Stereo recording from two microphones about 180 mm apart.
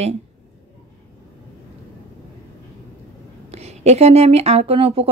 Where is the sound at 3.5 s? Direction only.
35° right (ahead or behind).